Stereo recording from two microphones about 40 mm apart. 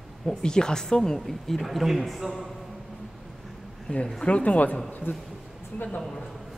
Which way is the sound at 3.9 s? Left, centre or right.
Left.